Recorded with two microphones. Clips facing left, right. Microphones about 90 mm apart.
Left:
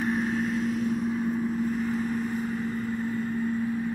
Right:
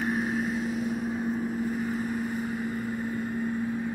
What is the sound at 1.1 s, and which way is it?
Vehicle, 20° right (ahead or behind).